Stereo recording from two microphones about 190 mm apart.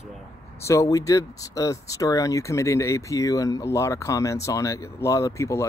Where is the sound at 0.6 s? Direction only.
15° left (ahead or behind).